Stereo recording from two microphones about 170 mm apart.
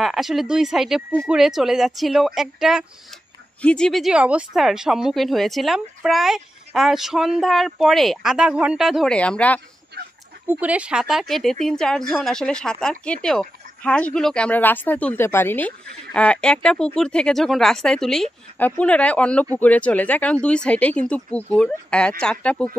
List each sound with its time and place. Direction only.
0.0 s speech: centre (ahead or behind)
10.0 s a sound: 70° right (ahead or behind)
10.5 s speech: 10° right (ahead or behind)